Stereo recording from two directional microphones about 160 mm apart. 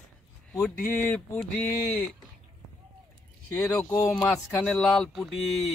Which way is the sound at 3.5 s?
Centre (ahead or behind).